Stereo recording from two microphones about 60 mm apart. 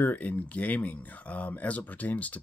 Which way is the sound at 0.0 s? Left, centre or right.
Left.